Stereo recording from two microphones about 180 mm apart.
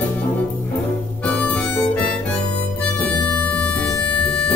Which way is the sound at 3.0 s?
5° left (ahead or behind).